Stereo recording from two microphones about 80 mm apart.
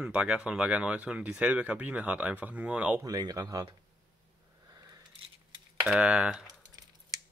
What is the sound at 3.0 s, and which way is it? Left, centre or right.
Speech, right.